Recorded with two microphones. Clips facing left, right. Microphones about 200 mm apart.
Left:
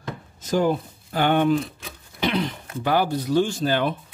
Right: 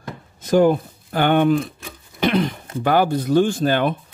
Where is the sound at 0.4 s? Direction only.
55° right (ahead or behind).